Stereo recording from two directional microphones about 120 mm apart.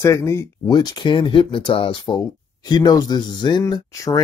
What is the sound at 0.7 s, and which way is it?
Speech, 35° left (ahead or behind).